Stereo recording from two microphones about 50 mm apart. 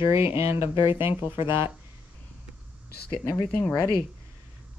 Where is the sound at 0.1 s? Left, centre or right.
Right.